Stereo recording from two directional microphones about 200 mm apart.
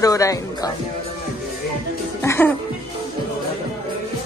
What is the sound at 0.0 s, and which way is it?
Speech, 15° left (ahead or behind).